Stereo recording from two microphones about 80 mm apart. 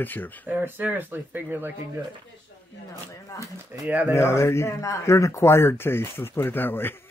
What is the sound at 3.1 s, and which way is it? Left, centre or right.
Speech, left.